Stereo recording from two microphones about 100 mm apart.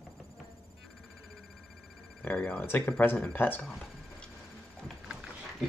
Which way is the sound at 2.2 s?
15° left (ahead or behind).